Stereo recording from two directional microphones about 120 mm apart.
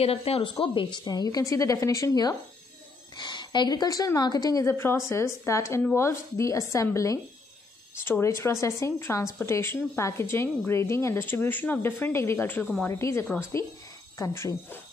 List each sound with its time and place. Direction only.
0.0 s a woman's voice: 55° left (ahead or behind); by 14.8 s 20° left (ahead or behind)